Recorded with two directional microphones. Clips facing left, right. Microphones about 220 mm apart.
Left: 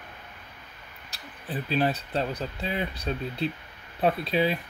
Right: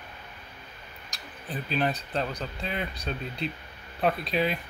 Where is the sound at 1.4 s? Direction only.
5° left (ahead or behind).